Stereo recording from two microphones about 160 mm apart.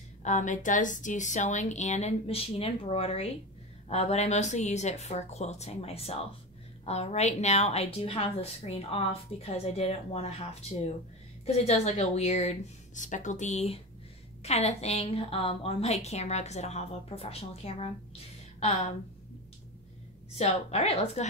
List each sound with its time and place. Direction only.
0.2 s a woman's voice: 50° left (ahead or behind)
20.3 s a woman's voice: 40° left (ahead or behind)